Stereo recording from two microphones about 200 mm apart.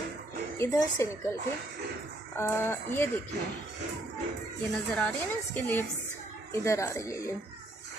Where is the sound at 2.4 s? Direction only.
10° left (ahead or behind).